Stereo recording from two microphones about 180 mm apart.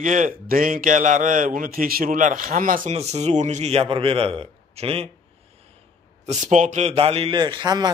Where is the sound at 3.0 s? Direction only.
35° right (ahead or behind).